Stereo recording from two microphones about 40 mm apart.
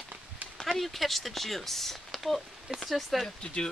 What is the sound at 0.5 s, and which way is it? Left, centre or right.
Speech, centre.